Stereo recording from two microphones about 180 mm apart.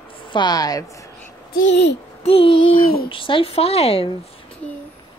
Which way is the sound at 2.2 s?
30° left (ahead or behind).